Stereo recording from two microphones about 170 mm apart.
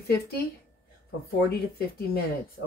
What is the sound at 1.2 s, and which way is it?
Speech, 65° left (ahead or behind).